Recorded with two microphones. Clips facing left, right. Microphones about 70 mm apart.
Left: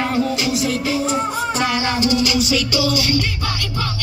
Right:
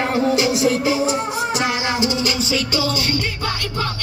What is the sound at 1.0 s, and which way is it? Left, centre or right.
Music, centre.